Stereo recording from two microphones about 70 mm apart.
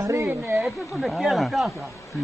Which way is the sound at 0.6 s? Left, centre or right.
Centre.